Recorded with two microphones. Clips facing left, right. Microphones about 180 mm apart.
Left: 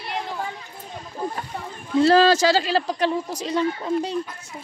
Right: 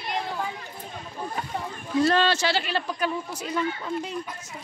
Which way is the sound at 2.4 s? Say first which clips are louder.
Left 7 dB; 90° left.